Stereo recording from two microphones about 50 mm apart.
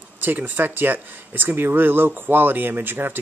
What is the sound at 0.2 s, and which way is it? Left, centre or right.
Speech, right.